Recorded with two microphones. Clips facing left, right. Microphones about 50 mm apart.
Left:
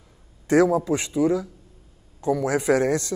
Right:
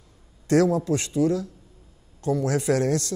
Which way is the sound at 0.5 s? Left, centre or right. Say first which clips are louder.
Left 2 dB; centre.